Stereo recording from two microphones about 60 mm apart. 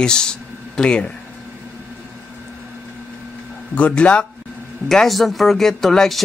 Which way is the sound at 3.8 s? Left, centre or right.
Left.